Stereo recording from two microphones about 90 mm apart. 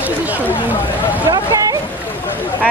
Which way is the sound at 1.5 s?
40° right (ahead or behind).